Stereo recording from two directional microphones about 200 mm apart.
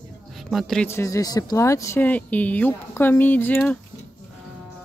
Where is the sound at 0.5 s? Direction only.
5° left (ahead or behind).